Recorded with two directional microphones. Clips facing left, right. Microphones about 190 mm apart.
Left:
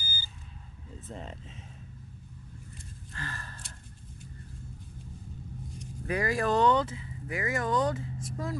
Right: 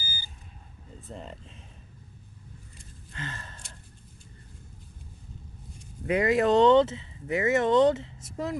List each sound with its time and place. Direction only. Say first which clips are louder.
0.0 s a sound: right 1 dB; 10° right (ahead or behind)
1.0 s speech: right 1 dB; centre (ahead or behind)
3.1 s sigh: right 2 dB; 20° right (ahead or behind)
6.0 s speech: right 6 dB; 20° right (ahead or behind)